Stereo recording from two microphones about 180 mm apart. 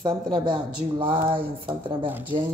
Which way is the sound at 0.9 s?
25° right (ahead or behind).